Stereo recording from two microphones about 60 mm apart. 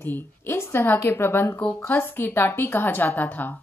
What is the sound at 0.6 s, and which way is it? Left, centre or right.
A woman's voice, left.